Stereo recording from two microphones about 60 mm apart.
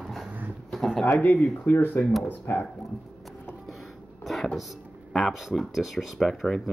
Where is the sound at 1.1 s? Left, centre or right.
Left.